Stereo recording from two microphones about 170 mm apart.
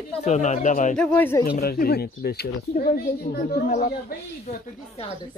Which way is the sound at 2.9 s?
50° left (ahead or behind).